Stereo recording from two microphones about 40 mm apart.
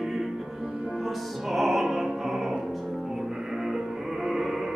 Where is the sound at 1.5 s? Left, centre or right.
Centre.